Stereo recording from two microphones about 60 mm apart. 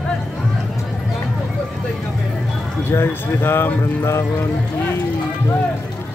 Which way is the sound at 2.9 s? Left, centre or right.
Left.